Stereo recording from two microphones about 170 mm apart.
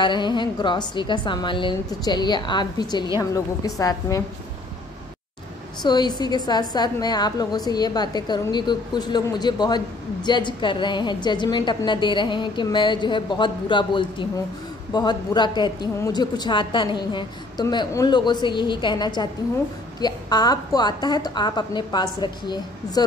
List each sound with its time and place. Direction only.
0.0 s a woman's voice: 25° left (ahead or behind)
5.8 s a woman's voice: 25° left (ahead or behind)